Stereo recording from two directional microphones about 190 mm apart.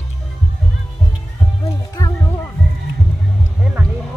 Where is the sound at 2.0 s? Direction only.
15° left (ahead or behind).